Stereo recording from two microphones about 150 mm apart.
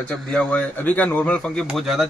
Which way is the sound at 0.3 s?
10° left (ahead or behind).